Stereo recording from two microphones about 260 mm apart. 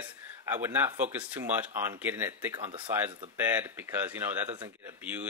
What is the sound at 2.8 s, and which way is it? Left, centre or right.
Speech, centre.